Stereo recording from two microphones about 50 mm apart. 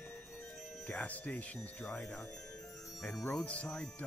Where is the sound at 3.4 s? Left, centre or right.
Left.